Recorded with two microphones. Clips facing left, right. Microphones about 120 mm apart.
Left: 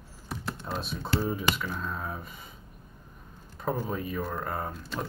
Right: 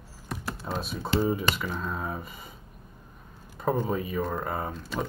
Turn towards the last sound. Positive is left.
turn(degrees=0)  # may be behind; listen again after turning